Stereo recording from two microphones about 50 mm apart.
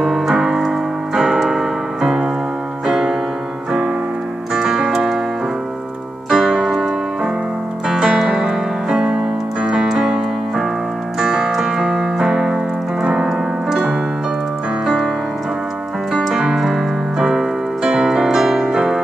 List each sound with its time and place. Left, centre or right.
0.0 s piano: centre
2.9 s keyboard: centre
4.6 s music: centre
6.3 s keyboard: centre
7.9 s piano: centre
11.1 s keyboard: centre
16.1 s keyboard: centre